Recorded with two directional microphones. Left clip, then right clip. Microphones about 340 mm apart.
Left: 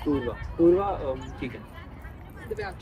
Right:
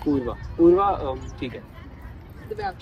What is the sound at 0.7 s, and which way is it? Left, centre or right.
Speech, right.